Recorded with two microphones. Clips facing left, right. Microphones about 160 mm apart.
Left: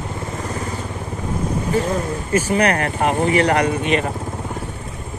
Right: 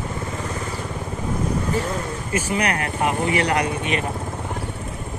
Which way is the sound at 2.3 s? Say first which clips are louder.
Left 6 dB; 45° left (ahead or behind).